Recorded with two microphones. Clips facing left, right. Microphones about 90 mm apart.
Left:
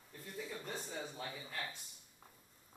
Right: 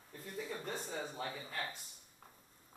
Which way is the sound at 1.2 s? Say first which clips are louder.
Right 3 dB; 35° right (ahead or behind).